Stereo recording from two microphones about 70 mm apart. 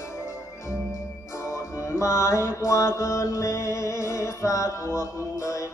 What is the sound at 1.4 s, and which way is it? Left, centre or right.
Music, left.